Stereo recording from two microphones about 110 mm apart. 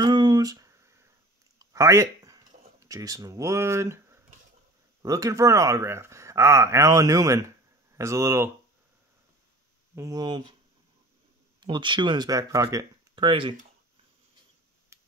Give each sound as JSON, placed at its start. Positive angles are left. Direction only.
{"t": 0.0, "sound": "a sound", "side_deg": -40}
{"t": 5.0, "sound": "speech", "side_deg": -30}
{"t": 9.9, "sound": "speech", "side_deg": -35}
{"t": 11.6, "sound": "speech", "side_deg": -50}
{"t": 13.1, "sound": "speech", "side_deg": -50}
{"t": 14.9, "sound": "a sound", "side_deg": -25}